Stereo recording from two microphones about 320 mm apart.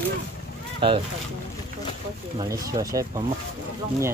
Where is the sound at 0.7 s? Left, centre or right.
Centre.